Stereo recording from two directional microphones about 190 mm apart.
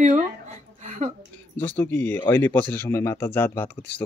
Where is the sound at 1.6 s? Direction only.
10° left (ahead or behind).